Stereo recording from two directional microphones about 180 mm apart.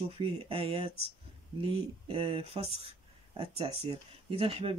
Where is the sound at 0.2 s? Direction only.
30° right (ahead or behind).